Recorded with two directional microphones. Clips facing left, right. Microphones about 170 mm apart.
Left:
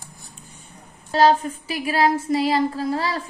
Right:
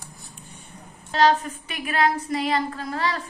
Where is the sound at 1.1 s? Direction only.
30° left (ahead or behind).